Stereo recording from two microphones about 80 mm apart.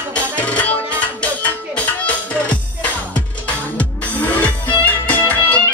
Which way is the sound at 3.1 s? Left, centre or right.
Centre.